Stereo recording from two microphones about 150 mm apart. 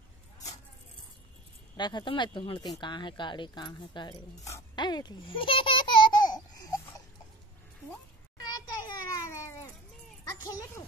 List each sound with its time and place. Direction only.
1.8 s speech: 30° left (ahead or behind)
4.7 s babbling: 30° left (ahead or behind)
8.5 s children playing: 25° left (ahead or behind)
10.2 s a sound: 20° left (ahead or behind)